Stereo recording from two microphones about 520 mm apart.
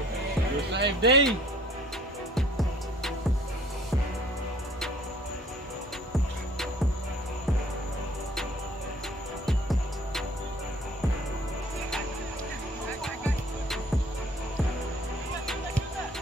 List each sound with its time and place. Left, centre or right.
0.7 s speech: centre
9.5 s music: centre